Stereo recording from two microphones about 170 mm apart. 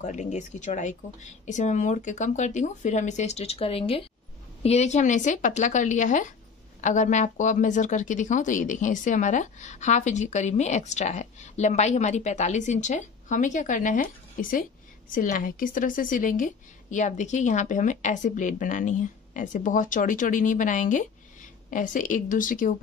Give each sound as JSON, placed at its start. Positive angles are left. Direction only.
{"t": 0.0, "sound": "speech", "side_deg": 45}